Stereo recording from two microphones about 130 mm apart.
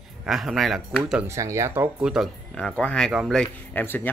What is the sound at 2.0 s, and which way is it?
Speech, 5° right (ahead or behind).